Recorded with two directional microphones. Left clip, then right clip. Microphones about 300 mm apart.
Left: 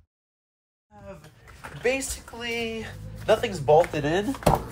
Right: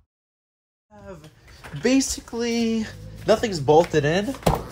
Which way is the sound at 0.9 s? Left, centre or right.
Centre.